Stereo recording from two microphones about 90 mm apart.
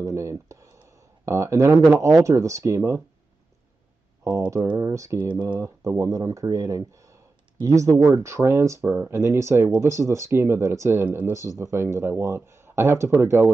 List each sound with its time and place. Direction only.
0.0 s speech: 35° right (ahead or behind)
4.7 s speech: 35° right (ahead or behind)
11.3 s speech: 35° right (ahead or behind)